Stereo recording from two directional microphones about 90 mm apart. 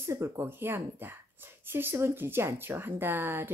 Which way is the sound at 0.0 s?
30° right (ahead or behind).